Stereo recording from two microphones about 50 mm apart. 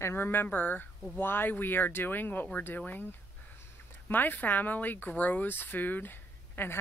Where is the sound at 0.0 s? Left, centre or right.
Left.